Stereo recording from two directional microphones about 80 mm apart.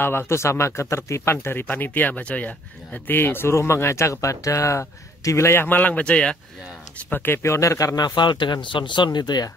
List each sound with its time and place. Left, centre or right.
0.0 s speech: left; by 6.3 s centre
7.1 s a man's voice: left